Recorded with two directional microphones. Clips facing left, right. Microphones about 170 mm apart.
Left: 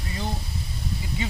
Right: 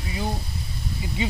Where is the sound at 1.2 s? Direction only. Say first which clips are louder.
Right 5 dB; 15° right (ahead or behind).